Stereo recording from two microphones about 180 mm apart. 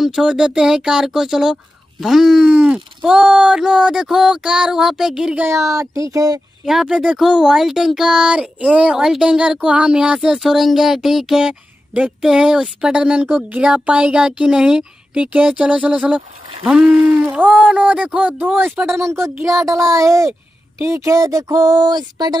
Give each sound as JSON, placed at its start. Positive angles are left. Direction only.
{"t": 0.0, "sound": "speech", "side_deg": -5}
{"t": 6.6, "sound": "a man's voice", "side_deg": 0}
{"t": 18.9, "sound": "a man's voice", "side_deg": -15}